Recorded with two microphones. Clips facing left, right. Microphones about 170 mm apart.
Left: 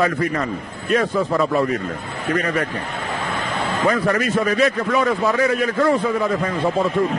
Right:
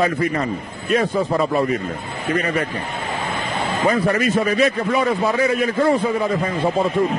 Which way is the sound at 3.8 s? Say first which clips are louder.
Right 1 dB; 25° right (ahead or behind).